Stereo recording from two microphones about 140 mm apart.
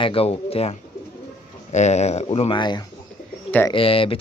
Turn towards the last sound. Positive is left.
turn(degrees=40)  # may be behind; listen again after turning